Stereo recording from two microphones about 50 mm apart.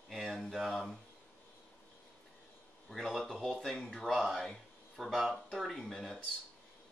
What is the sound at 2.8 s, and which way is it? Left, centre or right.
Speech, centre.